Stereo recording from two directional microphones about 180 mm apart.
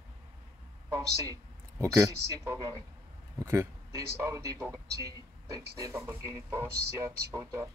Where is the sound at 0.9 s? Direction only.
10° right (ahead or behind).